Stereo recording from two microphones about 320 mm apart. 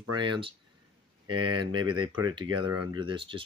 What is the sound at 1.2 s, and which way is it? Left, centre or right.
Speech, right.